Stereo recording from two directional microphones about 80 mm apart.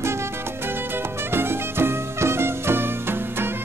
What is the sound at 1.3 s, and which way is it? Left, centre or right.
Music, right.